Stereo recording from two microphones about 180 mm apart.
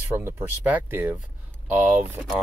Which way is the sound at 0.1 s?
15° right (ahead or behind).